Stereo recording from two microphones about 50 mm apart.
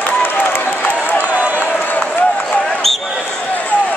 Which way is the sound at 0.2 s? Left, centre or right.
Left.